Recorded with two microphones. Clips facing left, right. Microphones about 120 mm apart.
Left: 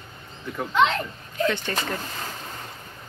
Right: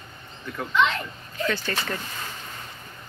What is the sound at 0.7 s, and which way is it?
Speech, 40° left (ahead or behind).